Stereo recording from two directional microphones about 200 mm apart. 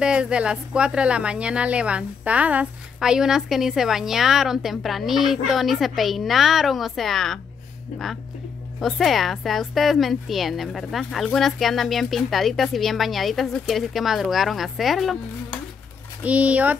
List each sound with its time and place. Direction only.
0.0 s speech: 5° right (ahead or behind)
7.9 s speech: 40° left (ahead or behind)
8.7 s speech: centre (ahead or behind)